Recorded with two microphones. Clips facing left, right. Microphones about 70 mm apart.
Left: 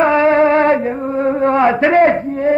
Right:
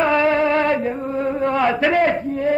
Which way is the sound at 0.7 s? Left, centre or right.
Left.